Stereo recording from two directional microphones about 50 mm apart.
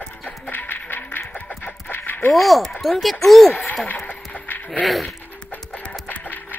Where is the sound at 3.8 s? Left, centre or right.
Left.